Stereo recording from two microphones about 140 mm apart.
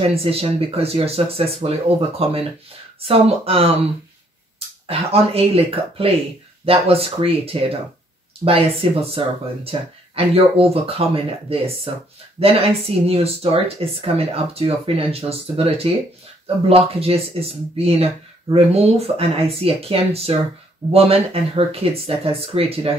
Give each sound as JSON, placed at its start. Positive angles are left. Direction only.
{"t": 0.1, "sound": "speech", "side_deg": -45}
{"t": 4.8, "sound": "speech", "side_deg": -45}
{"t": 8.8, "sound": "speech", "side_deg": -40}